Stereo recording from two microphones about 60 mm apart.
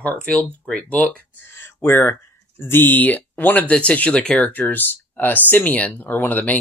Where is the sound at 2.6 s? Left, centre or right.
Left; by 4.5 s centre.